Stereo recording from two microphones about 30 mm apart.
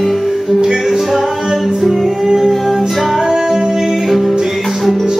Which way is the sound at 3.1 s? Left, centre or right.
Centre.